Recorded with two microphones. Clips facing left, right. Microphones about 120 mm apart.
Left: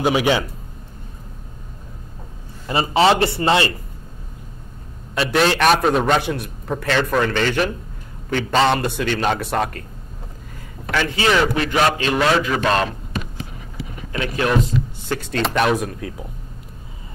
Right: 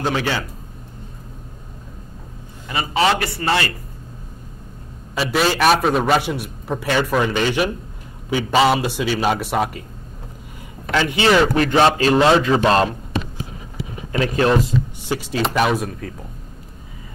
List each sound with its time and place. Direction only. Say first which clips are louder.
0.0 s a man's voice: left 4 dB; 15° left (ahead or behind)
2.7 s a man's voice: left 3 dB; 30° left (ahead or behind)
5.1 s a man's voice: left 1 dB; centre (ahead or behind)
10.9 s a man's voice: right 2 dB; 15° right (ahead or behind)
11.1 s a man's voice: right 3 dB; 25° right (ahead or behind)
14.1 s speech: right 4 dB; 35° right (ahead or behind)
15.3 s a man's voice: even; 5° right (ahead or behind)